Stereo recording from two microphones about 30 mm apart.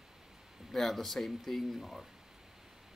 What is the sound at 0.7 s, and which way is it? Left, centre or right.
Speech, centre.